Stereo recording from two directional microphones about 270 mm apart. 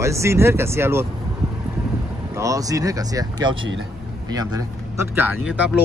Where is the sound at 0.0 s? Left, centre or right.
Centre.